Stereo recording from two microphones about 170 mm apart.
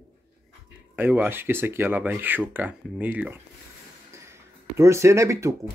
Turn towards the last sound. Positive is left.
turn(degrees=-15)  # may be behind; listen again after turning